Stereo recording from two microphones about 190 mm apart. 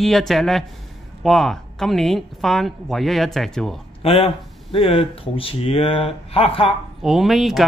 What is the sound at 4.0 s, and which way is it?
Speech, 30° left (ahead or behind).